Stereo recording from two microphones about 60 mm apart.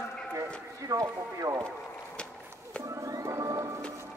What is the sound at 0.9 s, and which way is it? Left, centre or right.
Speech, right.